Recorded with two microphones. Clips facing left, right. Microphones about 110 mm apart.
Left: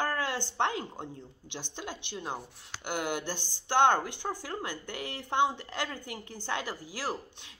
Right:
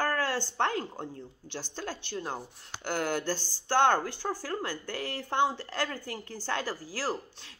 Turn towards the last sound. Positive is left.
turn(degrees=15)  # may be behind; listen again after turning